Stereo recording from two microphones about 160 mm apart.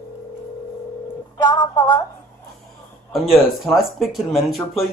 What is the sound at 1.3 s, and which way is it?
Telephone, 25° left (ahead or behind).